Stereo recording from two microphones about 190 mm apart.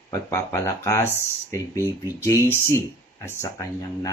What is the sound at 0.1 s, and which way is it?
Speech, 15° left (ahead or behind).